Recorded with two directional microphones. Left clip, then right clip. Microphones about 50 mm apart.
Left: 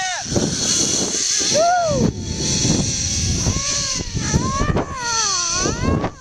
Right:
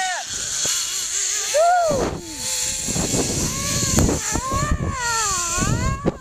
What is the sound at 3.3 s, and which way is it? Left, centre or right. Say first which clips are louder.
Baby cry: left 2 dB; right.